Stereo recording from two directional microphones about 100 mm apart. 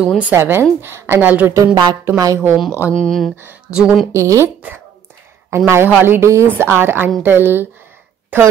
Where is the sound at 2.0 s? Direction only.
35° right (ahead or behind).